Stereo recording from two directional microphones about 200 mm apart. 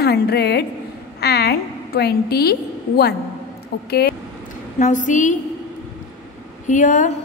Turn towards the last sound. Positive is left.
turn(degrees=40)  # may be behind; listen again after turning